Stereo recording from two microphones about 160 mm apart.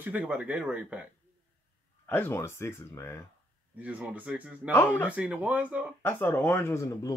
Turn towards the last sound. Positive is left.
turn(degrees=20)  # may be behind; listen again after turning